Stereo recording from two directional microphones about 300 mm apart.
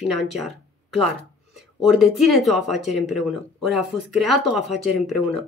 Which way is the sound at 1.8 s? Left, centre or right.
Centre.